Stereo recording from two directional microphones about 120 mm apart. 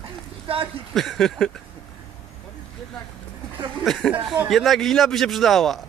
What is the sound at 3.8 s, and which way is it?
Speech, 5° left (ahead or behind).